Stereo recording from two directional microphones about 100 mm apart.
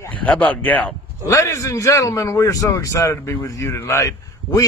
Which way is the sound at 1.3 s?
30° left (ahead or behind).